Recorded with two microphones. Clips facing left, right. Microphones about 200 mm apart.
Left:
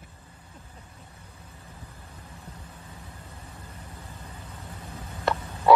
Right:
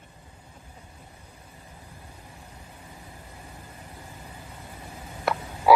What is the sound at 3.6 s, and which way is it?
Vehicle, 15° right (ahead or behind).